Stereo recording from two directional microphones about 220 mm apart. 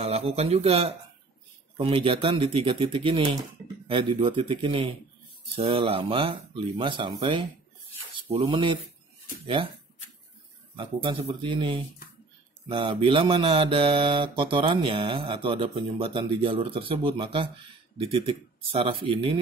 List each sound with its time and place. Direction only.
0.0 s mantra: 25° right (ahead or behind)
10.8 s mantra: 25° right (ahead or behind)